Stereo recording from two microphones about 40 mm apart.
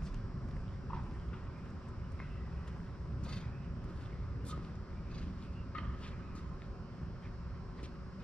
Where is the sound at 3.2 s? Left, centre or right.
Left.